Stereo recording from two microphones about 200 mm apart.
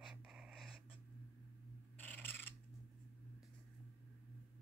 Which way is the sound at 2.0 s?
10° left (ahead or behind).